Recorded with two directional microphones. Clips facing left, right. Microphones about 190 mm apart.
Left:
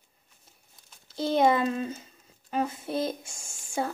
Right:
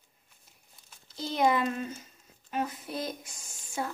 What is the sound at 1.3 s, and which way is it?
Speech, 25° left (ahead or behind).